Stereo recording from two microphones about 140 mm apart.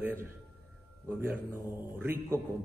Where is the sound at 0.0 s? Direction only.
15° right (ahead or behind).